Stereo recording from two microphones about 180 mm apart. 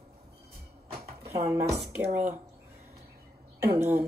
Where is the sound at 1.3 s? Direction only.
15° right (ahead or behind).